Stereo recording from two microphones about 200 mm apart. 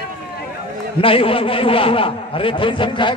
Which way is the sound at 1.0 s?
25° left (ahead or behind).